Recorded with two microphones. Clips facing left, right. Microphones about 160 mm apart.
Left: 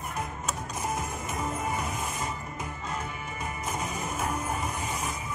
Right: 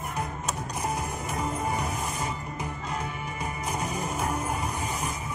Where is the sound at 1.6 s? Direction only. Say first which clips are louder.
Right 2 dB; 35° right (ahead or behind).